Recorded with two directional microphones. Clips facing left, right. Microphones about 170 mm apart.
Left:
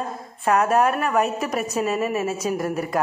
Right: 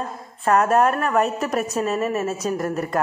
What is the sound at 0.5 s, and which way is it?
A man's voice, 5° left (ahead or behind).